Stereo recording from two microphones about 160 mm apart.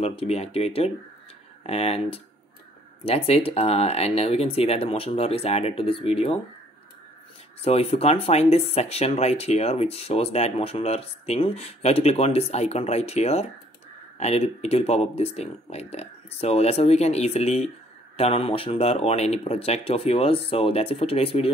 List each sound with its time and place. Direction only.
0.0 s speech: 35° left (ahead or behind)
7.6 s speech: 40° left (ahead or behind)